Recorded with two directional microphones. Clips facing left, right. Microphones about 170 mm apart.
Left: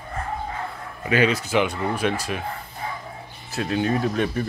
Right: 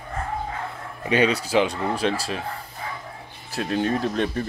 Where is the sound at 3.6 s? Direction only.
Centre (ahead or behind).